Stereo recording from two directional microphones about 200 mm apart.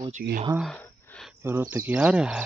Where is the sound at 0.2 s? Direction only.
45° right (ahead or behind).